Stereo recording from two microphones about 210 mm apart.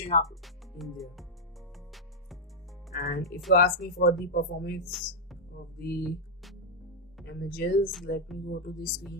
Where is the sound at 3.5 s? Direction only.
50° left (ahead or behind).